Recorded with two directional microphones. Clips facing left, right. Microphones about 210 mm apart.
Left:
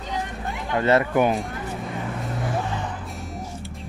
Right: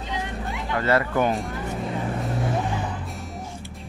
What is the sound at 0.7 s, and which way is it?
Speech, 20° left (ahead or behind).